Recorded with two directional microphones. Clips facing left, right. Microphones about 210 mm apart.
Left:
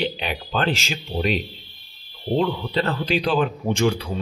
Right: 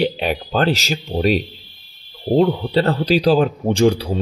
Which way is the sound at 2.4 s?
40° right (ahead or behind).